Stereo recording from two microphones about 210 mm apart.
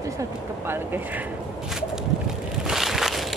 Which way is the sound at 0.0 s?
15° right (ahead or behind).